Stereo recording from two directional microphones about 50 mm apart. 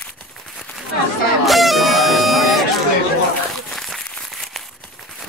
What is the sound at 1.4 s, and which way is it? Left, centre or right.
Music, centre.